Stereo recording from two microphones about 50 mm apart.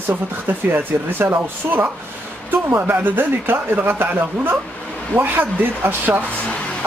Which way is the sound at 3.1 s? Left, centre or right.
Right.